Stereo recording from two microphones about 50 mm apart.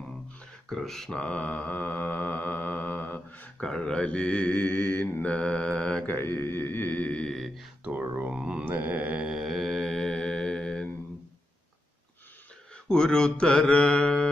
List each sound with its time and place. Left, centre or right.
0.7 s speech: centre
1.1 s mantra: left
3.6 s mantra: centre
6.0 s mantra: left
7.3 s a sound: centre
8.3 s a sound: right
8.6 s mantra: right
9.3 s mantra: centre
9.6 s mantra: centre
12.8 s mantra: centre